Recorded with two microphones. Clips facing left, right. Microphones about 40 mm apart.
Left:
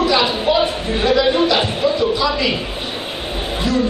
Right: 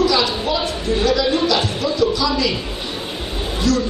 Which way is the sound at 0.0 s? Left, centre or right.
Left.